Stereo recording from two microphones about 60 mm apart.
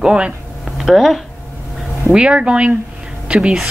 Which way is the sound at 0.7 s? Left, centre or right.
Centre.